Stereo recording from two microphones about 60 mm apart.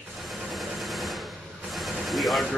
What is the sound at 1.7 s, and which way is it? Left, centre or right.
Vehicle, centre.